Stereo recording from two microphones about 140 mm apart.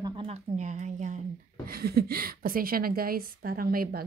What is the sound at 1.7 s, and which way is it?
A woman's voice, 90° right.